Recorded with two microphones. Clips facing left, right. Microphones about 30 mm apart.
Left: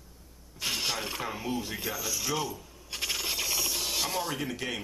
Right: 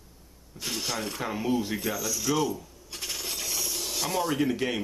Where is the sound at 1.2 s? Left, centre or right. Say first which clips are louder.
Right 5 dB; centre.